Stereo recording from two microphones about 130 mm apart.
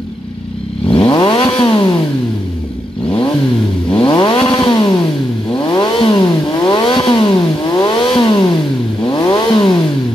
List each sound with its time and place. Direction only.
0.9 s vehicle: 35° left (ahead or behind)
3.9 s vehicle: 40° left (ahead or behind)